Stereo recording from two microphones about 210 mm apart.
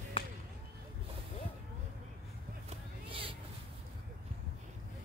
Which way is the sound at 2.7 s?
25° right (ahead or behind).